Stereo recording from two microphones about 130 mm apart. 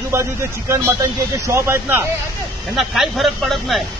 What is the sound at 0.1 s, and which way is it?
Speech, 20° right (ahead or behind).